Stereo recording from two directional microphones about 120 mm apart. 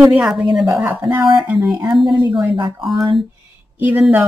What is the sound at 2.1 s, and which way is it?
Speech, 40° right (ahead or behind).